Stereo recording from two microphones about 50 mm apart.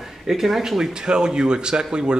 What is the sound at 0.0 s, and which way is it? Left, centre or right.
Speech, centre.